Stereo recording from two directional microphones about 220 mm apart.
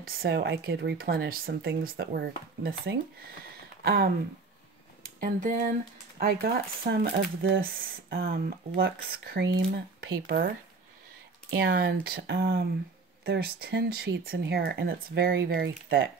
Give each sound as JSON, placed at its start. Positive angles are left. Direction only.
{"t": 0.0, "sound": "speech", "side_deg": -45}
{"t": 5.2, "sound": "speech", "side_deg": -35}
{"t": 11.6, "sound": "speech", "side_deg": -45}